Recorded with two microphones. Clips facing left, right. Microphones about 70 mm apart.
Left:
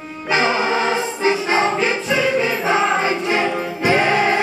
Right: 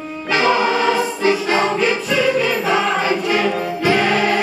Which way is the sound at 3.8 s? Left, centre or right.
Left.